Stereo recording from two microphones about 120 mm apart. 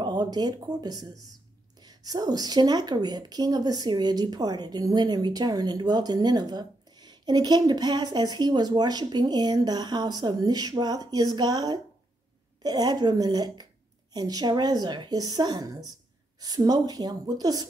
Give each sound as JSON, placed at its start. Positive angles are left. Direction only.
{"t": 0.0, "sound": "a woman's voice", "side_deg": -35}